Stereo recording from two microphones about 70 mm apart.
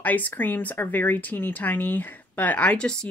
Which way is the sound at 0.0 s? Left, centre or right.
Left.